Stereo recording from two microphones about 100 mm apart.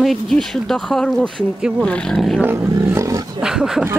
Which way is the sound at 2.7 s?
30° right (ahead or behind).